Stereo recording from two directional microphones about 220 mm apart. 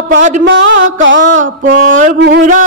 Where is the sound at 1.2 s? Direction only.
35° right (ahead or behind).